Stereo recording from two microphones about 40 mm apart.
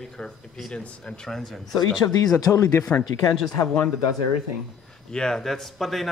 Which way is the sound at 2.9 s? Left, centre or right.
Left.